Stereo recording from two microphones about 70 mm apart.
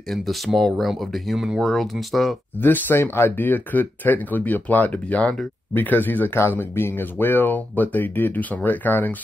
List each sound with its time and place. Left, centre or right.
0.6 s speech: centre
2.6 s speech: left